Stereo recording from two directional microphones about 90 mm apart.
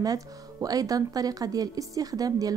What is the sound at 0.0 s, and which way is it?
A woman's voice, 45° right (ahead or behind).